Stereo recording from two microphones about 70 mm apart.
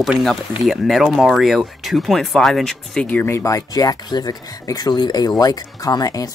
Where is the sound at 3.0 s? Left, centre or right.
Left.